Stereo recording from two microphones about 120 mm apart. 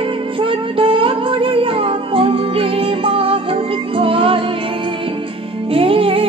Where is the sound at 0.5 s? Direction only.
50° right (ahead or behind).